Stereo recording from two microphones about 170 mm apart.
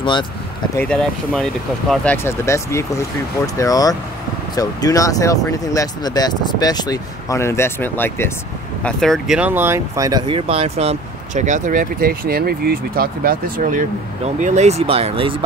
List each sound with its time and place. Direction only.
0.0 s speech: 30° left (ahead or behind)
0.7 s speech: 5° left (ahead or behind)
2.2 s speech: 15° left (ahead or behind)
9.4 s speech: 10° right (ahead or behind); by 13.8 s 55° right (ahead or behind)
14.4 s speech: 40° right (ahead or behind)